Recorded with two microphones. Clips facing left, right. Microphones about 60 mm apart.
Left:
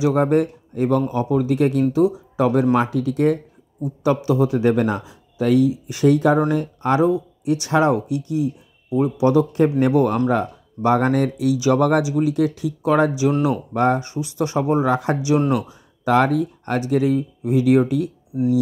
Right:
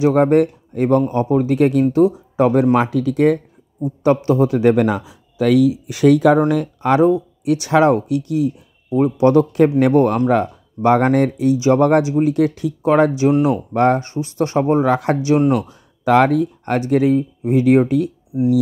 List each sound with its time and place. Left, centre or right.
0.0 s speech: right
2.7 s speech: right
3.8 s a man's voice: right
8.9 s speech: right
9.5 s speech: right
10.4 s speech: right
15.0 s speech: right